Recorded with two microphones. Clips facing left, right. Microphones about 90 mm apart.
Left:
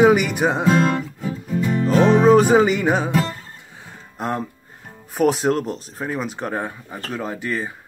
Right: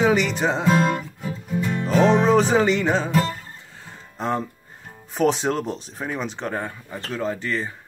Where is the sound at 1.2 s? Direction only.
Centre (ahead or behind); by 4.2 s 15° left (ahead or behind).